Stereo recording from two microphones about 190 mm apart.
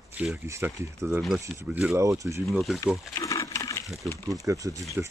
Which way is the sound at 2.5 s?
Centre (ahead or behind).